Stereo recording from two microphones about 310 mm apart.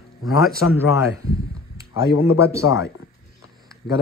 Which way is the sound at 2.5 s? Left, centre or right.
Centre.